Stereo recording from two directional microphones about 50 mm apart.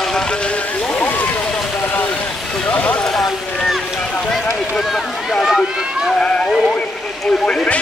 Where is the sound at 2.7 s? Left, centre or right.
Left.